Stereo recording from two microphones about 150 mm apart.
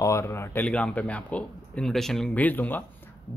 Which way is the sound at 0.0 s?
20° left (ahead or behind).